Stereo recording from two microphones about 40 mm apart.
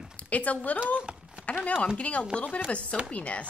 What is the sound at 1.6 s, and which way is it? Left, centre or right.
Speech, left.